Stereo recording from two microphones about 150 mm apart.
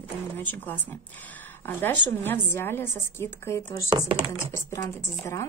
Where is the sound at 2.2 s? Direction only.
15° left (ahead or behind).